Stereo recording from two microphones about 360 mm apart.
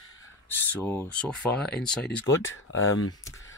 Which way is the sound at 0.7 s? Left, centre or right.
Centre.